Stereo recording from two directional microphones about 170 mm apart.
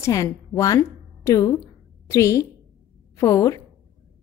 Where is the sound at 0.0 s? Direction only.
20° left (ahead or behind).